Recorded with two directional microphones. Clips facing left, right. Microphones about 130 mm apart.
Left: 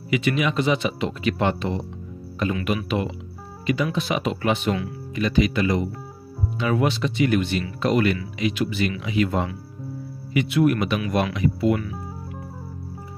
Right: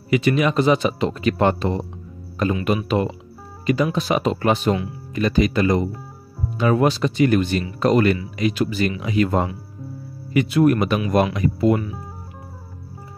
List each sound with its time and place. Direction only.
0.1 s speech: 40° right (ahead or behind)
3.6 s speech: 40° right (ahead or behind)